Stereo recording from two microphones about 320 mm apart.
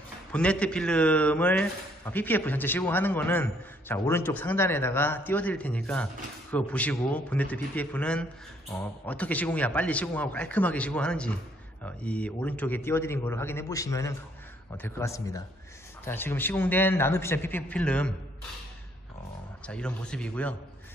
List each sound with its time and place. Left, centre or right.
0.3 s a man's voice: centre
19.6 s speech: centre